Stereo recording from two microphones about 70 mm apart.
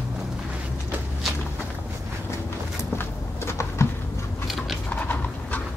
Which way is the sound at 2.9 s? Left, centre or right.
Left.